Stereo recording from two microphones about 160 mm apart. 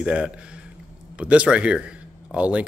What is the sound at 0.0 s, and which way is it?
A man's voice, 5° right (ahead or behind).